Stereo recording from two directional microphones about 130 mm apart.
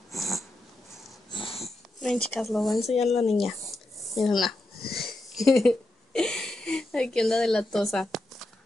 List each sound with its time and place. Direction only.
0.1 s dog: centre (ahead or behind)
1.3 s wheeze: 45° left (ahead or behind)
2.0 s speech: 5° left (ahead or behind)
3.3 s a sound: centre (ahead or behind)